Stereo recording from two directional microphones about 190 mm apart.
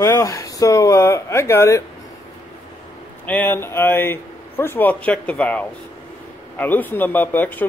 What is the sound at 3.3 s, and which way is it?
Speech, 10° left (ahead or behind).